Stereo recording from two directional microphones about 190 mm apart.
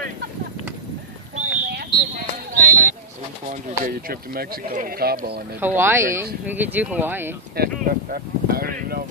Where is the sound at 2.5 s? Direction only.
50° right (ahead or behind).